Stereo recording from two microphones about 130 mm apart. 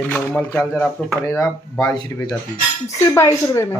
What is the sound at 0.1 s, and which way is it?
Speech, 10° left (ahead or behind).